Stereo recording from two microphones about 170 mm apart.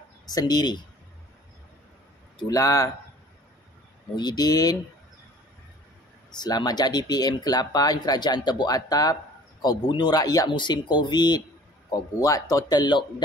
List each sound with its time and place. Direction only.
0.3 s speech: 25° left (ahead or behind)
2.3 s speech: 20° left (ahead or behind)
4.2 s speech: 25° left (ahead or behind)
6.3 s speech: 25° left (ahead or behind)